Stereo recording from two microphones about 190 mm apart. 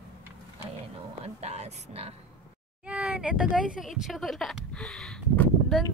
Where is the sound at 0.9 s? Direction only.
35° right (ahead or behind).